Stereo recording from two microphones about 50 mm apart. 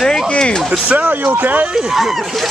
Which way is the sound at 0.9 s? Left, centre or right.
Right.